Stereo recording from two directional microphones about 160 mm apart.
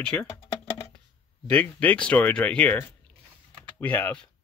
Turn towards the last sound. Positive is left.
turn(degrees=10)  # may be behind; listen again after turning